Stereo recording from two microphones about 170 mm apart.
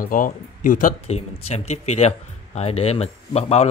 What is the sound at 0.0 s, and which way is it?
Speech, 55° left (ahead or behind).